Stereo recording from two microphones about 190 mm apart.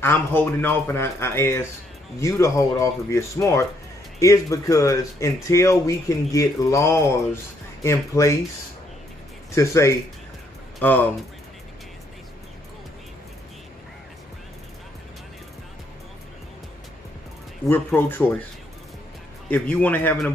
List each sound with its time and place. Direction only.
0.0 s speech: 10° left (ahead or behind)
9.6 s speech: 15° left (ahead or behind)
17.6 s speech: 10° left (ahead or behind)
19.5 s speech: 10° left (ahead or behind)